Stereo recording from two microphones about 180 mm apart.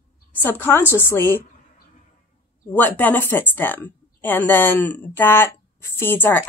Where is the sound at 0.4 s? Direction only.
10° left (ahead or behind).